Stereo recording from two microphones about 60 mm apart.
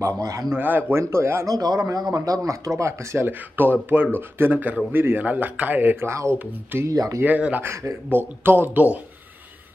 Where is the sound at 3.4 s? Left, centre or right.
Right.